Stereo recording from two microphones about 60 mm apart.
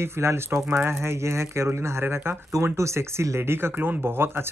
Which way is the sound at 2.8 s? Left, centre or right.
Right.